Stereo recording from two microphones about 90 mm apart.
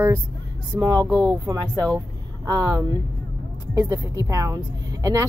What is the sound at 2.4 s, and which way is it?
A woman's voice, 40° right (ahead or behind).